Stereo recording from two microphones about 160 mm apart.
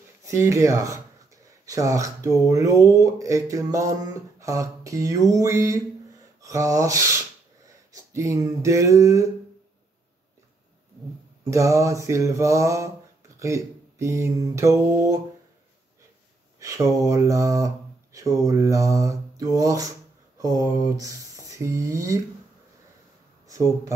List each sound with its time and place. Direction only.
0.2 s speech: 20° right (ahead or behind)
11.4 s speech: 20° right (ahead or behind)
13.4 s a sound: 20° right (ahead or behind)
16.5 s speech: 20° right (ahead or behind)
23.5 s speech: 20° right (ahead or behind)